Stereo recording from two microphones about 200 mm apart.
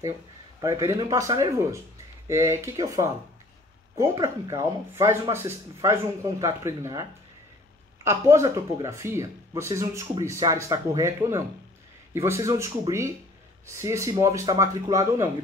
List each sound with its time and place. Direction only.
0.6 s speech: 15° right (ahead or behind)